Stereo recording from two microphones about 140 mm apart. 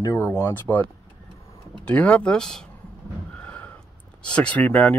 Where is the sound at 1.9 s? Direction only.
10° left (ahead or behind).